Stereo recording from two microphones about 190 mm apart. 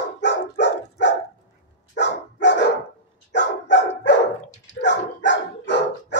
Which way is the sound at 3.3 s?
65° left (ahead or behind).